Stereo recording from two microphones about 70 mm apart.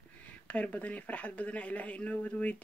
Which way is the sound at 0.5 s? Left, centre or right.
Centre.